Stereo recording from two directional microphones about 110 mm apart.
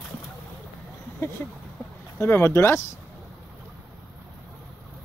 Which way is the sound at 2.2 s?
20° left (ahead or behind).